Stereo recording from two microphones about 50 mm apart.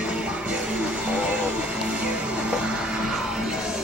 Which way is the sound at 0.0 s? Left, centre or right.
Right.